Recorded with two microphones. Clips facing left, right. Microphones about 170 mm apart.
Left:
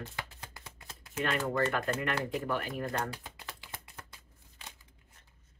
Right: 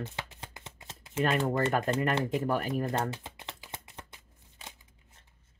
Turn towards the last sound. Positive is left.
turn(degrees=-20)  # may be behind; listen again after turning